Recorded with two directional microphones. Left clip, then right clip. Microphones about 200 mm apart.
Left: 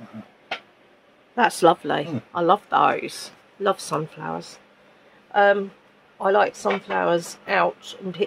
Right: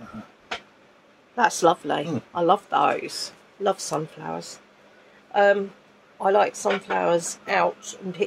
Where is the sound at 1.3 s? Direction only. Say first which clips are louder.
Left 2 dB; 35° left (ahead or behind).